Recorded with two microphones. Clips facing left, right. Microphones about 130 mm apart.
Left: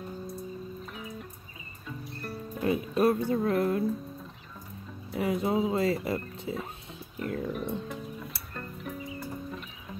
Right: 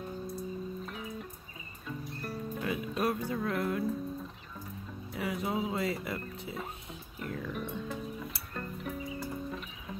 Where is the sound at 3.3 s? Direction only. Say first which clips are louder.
Left 6 dB; 30° left (ahead or behind).